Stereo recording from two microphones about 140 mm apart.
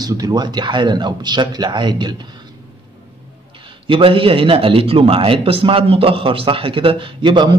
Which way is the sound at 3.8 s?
40° right (ahead or behind).